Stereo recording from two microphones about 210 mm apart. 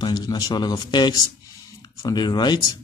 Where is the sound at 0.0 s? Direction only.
20° left (ahead or behind).